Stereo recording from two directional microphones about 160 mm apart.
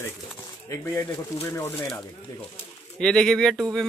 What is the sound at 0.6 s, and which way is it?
Speech, 20° left (ahead or behind).